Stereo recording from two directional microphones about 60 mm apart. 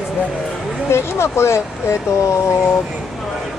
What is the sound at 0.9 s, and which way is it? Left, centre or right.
Speech, left.